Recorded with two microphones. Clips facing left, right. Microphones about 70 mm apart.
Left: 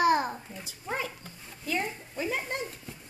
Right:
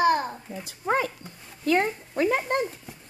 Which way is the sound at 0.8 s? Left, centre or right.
Right.